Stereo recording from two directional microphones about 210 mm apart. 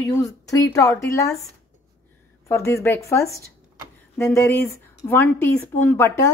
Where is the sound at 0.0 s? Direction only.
15° left (ahead or behind).